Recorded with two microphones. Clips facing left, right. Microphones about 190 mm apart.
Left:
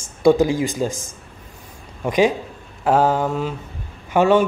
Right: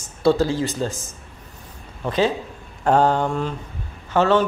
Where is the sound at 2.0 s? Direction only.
15° left (ahead or behind).